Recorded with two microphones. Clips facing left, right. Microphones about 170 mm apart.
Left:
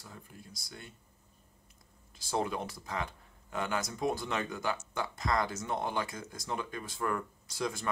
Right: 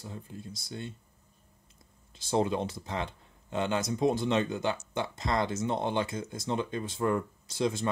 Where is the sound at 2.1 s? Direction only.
25° right (ahead or behind).